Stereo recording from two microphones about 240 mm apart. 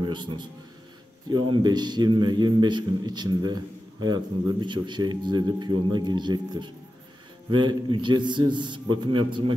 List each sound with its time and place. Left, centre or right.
0.0 s a man's voice: centre